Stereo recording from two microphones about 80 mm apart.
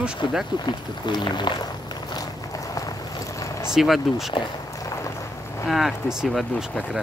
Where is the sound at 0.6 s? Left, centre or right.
Left.